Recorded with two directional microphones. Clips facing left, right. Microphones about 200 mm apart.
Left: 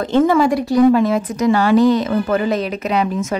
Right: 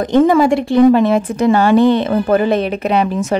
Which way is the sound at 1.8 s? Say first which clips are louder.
Right 2 dB; 60° right (ahead or behind).